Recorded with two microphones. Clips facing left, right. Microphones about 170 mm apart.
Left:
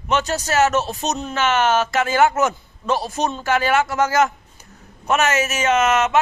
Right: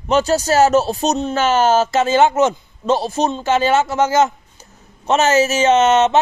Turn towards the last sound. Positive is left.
turn(degrees=-30)  # may be behind; listen again after turning